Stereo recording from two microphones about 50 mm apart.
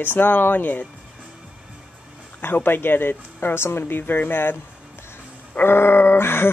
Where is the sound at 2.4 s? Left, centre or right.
Left.